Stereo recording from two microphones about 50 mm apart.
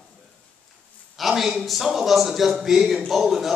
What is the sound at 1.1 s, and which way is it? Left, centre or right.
A man's voice, centre.